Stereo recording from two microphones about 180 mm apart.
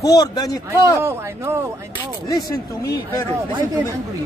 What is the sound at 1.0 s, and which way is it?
Speech, 15° right (ahead or behind).